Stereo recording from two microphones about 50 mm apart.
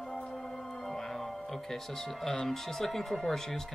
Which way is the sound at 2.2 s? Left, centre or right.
Centre.